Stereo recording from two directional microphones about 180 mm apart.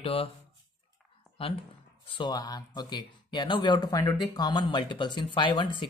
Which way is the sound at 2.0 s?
25° left (ahead or behind).